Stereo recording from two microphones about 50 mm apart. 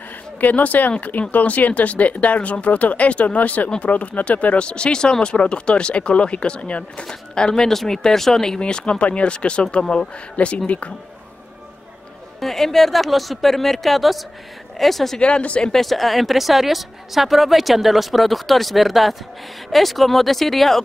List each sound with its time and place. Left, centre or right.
0.4 s speech: left
12.4 s a woman's voice: centre
15.1 s speech: left
15.7 s a woman's voice: centre